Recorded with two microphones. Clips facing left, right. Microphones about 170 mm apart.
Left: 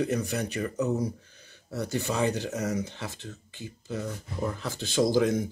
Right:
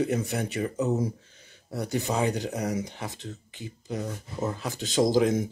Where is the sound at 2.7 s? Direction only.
15° right (ahead or behind).